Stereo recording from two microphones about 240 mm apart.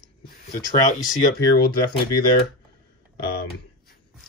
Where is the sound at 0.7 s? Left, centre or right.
Left.